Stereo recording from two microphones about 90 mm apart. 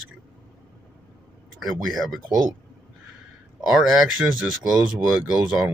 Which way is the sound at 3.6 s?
5° right (ahead or behind).